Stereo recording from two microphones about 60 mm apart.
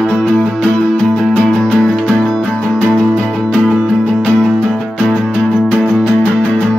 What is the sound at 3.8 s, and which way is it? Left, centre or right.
Music, centre.